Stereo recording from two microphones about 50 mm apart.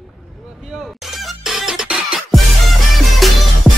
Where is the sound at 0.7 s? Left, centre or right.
Centre.